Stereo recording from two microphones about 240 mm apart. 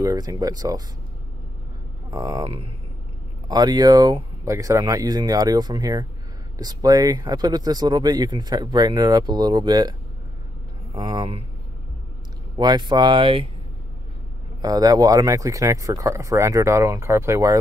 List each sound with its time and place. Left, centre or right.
0.0 s speech: centre
2.0 s speech: centre
12.5 s speech: centre
14.6 s speech: centre